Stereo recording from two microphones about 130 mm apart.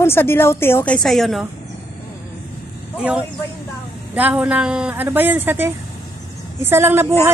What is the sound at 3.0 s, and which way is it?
A woman's voice, 10° right (ahead or behind).